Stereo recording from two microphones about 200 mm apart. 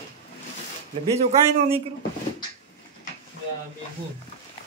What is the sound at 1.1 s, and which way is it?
Speech, 30° right (ahead or behind).